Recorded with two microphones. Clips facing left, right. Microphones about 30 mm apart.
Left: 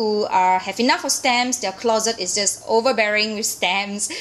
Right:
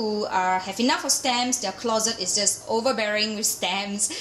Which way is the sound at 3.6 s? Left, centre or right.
Left.